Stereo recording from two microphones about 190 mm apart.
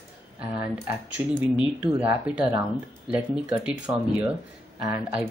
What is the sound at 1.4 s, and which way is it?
Speech, 10° right (ahead or behind).